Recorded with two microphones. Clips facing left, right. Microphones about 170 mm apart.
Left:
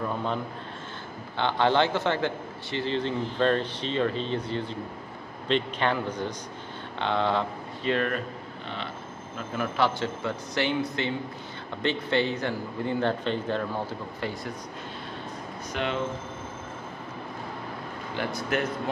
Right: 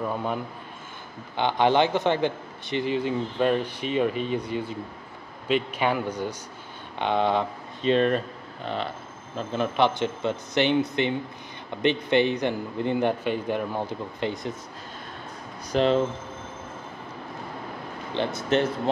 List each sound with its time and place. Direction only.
1.3 s a man's voice: 15° right (ahead or behind)
9.5 s a man's voice: 20° right (ahead or behind)
15.7 s speech: 35° right (ahead or behind)
18.1 s speech: 25° right (ahead or behind)